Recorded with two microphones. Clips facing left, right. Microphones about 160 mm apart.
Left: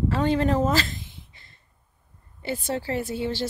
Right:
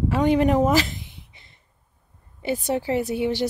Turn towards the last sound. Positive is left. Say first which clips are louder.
# right 4 dB
turn(degrees=-20)  # may be behind; listen again after turning